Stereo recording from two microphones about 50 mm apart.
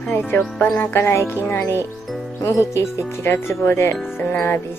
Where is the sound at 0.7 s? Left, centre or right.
Left.